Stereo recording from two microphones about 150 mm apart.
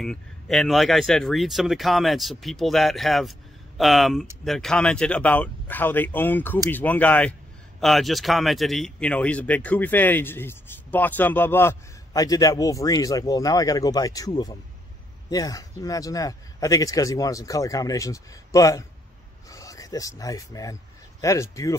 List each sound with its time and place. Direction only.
0.0 s a man's voice: 5° left (ahead or behind); by 21.7 s 20° left (ahead or behind)